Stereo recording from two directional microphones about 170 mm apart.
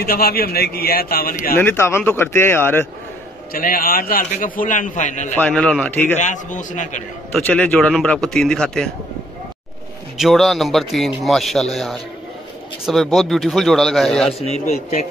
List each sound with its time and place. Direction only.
0.0 s a man's voice: 65° left (ahead or behind)
1.6 s speech: 15° left (ahead or behind)
3.5 s a man's voice: 55° left (ahead or behind)
5.3 s speech: 10° left (ahead or behind)
6.1 s a man's voice: 45° left (ahead or behind)
7.3 s a man's voice: 10° left (ahead or behind)
10.1 s a man's voice: centre (ahead or behind)
14.4 s a man's voice: 40° left (ahead or behind)